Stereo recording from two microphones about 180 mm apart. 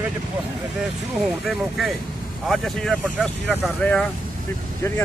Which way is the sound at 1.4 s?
Centre (ahead or behind).